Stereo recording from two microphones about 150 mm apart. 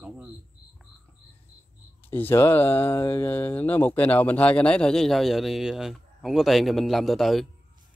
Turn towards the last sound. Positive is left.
turn(degrees=0)  # may be behind; listen again after turning